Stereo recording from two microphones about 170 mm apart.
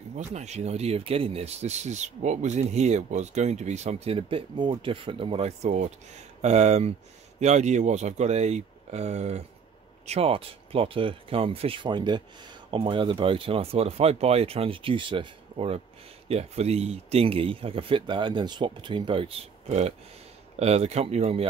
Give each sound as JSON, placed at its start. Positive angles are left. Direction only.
{"t": 0.3, "sound": "speech", "side_deg": -40}